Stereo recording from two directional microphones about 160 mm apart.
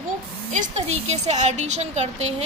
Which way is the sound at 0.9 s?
45° right (ahead or behind).